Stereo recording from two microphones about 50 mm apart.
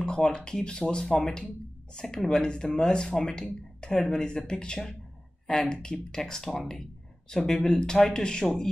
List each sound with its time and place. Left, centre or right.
0.0 s speech: centre